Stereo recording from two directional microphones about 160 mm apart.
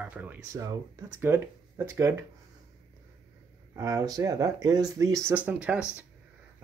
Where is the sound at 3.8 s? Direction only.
20° right (ahead or behind).